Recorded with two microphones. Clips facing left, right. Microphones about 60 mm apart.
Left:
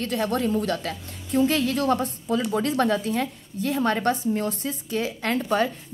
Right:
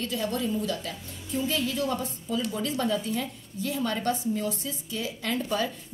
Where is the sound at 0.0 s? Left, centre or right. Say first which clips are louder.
Left 5 dB; left.